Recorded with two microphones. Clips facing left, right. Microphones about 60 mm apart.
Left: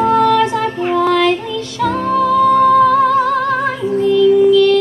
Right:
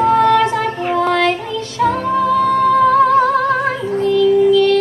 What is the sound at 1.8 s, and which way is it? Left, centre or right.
Music, right.